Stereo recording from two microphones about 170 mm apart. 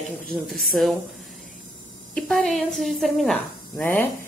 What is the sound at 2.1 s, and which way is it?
A woman's voice, centre (ahead or behind).